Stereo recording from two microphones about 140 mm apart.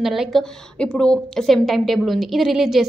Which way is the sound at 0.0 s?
5° right (ahead or behind).